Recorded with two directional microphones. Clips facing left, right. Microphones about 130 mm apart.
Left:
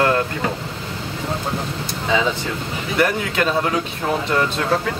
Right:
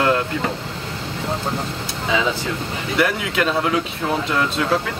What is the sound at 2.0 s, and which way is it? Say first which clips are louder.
Speech: left 1 dB; centre (ahead or behind).